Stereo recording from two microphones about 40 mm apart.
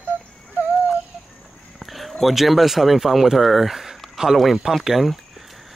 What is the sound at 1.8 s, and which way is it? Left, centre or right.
Speech, centre.